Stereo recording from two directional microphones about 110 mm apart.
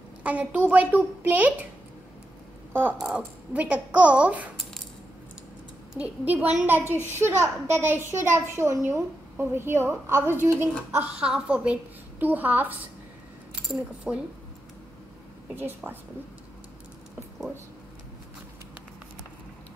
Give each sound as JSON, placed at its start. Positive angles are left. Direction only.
{"t": 0.2, "sound": "a woman's voice", "side_deg": -15}
{"t": 2.7, "sound": "a woman's voice", "side_deg": -15}
{"t": 5.9, "sound": "a woman's voice", "side_deg": -15}